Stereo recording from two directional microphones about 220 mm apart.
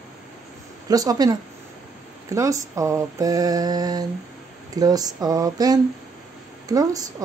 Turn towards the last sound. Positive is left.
turn(degrees=-15)  # may be behind; listen again after turning